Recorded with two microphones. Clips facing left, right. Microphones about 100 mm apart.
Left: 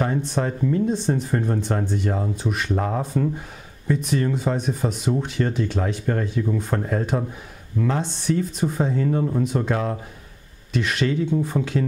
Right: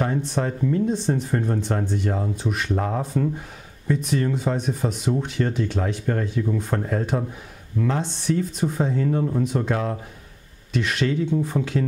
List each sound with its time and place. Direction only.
0.4 s speech: 20° left (ahead or behind)
8.0 s speech: 10° left (ahead or behind)
8.6 s speech: 20° left (ahead or behind)
11.3 s speech: 25° left (ahead or behind)